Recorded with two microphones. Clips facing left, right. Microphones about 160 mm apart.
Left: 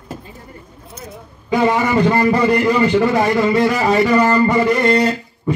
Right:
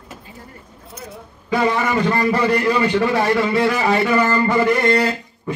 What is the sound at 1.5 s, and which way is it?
A man's voice, 10° left (ahead or behind).